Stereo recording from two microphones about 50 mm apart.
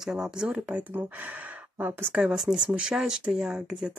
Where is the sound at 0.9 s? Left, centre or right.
Right.